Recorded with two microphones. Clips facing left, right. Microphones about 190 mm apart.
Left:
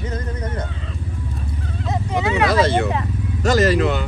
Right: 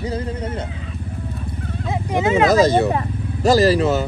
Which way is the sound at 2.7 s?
35° right (ahead or behind).